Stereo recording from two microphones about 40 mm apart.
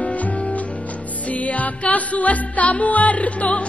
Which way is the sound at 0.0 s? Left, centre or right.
Left.